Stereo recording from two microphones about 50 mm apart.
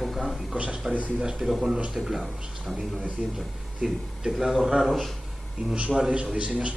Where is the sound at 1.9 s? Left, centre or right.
Centre.